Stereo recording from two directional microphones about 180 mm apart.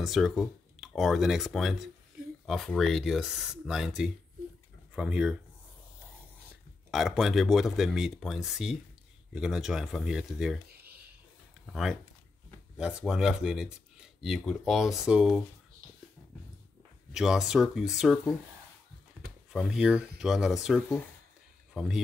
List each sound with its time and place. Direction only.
0.0 s speech: centre (ahead or behind)
6.9 s speech: centre (ahead or behind)
10.7 s a sound: 60° right (ahead or behind)
11.6 s speech: centre (ahead or behind)
17.1 s speech: 5° right (ahead or behind)
19.5 s speech: 5° right (ahead or behind)